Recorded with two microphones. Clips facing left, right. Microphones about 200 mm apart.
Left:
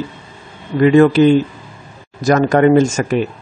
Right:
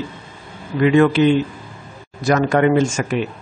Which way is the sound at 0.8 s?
40° left (ahead or behind).